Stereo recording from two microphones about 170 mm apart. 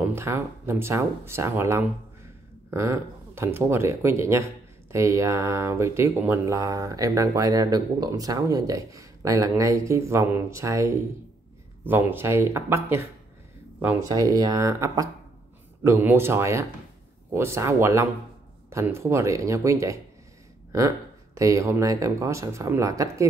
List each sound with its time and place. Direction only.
0.0 s speech: 15° right (ahead or behind)
14.1 s speech: 20° right (ahead or behind)
21.4 s speech: 20° right (ahead or behind)